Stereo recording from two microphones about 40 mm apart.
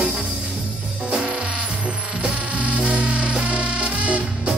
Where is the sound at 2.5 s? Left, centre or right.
Right.